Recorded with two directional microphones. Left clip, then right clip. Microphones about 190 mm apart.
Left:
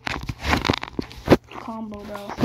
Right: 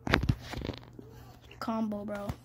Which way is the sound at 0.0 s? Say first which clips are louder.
Left 2 dB; 5° left (ahead or behind).